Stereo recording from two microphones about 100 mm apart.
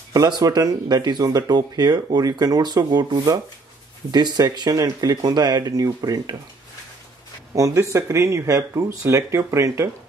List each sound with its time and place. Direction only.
0.1 s speech: 40° right (ahead or behind)
7.5 s speech: 30° right (ahead or behind)